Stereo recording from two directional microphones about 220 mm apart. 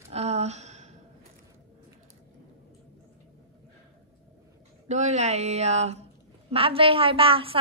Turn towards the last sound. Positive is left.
turn(degrees=-25)  # may be behind; listen again after turning